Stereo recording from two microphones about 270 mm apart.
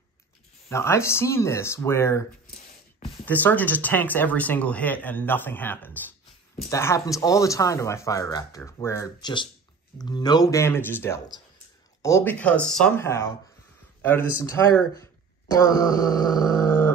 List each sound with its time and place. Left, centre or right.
0.7 s speech: centre
3.3 s speech: centre